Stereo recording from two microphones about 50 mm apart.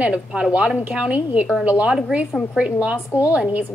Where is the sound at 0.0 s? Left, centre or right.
Right.